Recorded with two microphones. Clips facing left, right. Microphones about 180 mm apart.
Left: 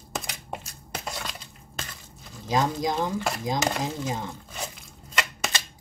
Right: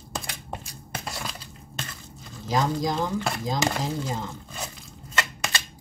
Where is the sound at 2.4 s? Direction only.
20° left (ahead or behind).